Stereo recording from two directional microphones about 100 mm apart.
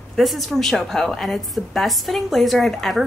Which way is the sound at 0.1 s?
Centre (ahead or behind).